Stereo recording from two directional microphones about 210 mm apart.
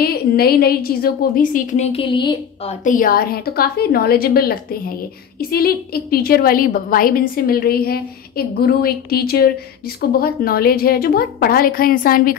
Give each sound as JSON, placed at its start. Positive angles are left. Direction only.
{"t": 0.0, "sound": "a woman's voice", "side_deg": 45}
{"t": 3.0, "sound": "a woman's voice", "side_deg": 45}